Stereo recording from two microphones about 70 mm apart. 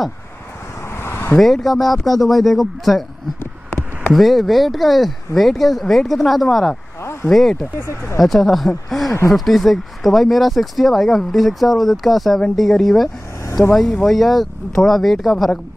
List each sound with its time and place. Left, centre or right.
0.8 s vehicle: left
1.4 s speech: centre
3.3 s a sound: left
4.1 s speech: centre
7.0 s a sound: left
7.2 s speech: centre